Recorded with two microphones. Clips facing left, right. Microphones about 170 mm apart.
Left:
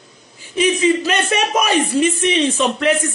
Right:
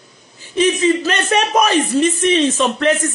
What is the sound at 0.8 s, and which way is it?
Speech, 10° left (ahead or behind).